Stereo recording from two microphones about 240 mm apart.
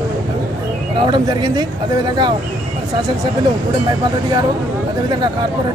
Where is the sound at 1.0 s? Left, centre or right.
Centre.